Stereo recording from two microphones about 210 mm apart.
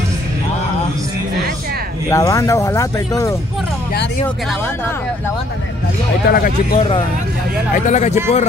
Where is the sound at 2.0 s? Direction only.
15° left (ahead or behind).